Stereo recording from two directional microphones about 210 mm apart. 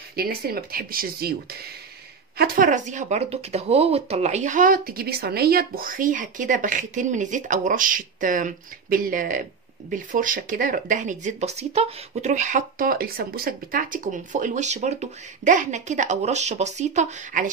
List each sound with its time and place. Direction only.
0.1 s speech: 45° right (ahead or behind)